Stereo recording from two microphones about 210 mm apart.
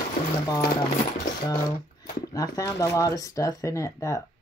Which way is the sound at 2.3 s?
15° left (ahead or behind).